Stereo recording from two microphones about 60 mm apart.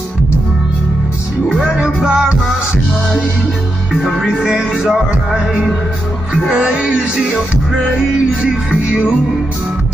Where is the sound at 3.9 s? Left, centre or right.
Centre.